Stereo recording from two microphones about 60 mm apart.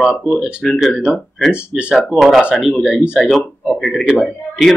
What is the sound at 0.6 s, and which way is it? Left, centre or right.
Speech, centre.